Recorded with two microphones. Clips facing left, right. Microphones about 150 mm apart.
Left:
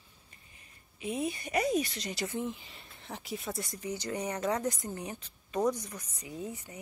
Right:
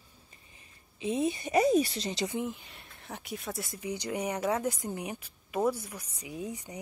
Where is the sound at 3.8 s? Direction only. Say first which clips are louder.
Right 3 dB; 10° right (ahead or behind).